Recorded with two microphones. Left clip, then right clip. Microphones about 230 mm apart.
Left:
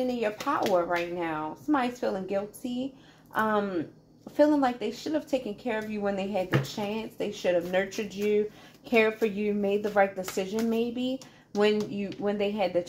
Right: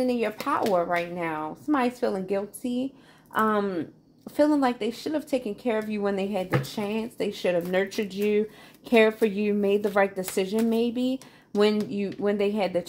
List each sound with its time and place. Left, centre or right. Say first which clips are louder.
0.0 s speech: right 3 dB; right